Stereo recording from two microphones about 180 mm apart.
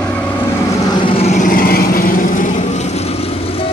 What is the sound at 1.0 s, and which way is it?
Vehicle, 30° left (ahead or behind).